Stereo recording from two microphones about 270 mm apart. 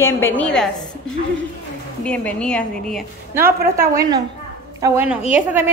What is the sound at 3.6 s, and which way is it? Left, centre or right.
Speech, right.